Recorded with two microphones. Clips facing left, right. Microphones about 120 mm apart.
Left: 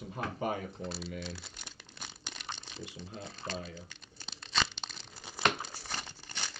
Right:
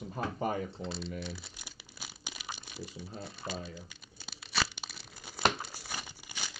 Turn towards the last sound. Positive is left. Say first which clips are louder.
# left 1 dB
turn(degrees=-10)  # may be behind; listen again after turning